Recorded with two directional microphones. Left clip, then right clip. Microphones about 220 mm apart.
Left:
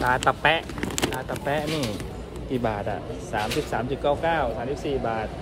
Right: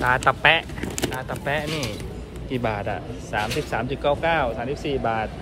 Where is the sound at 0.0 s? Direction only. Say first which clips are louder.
Right 3 dB; 10° left (ahead or behind).